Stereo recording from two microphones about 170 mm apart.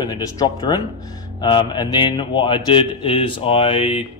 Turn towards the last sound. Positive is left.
turn(degrees=35)  # may be behind; listen again after turning